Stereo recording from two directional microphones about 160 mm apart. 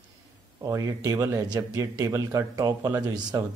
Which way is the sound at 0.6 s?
20° right (ahead or behind).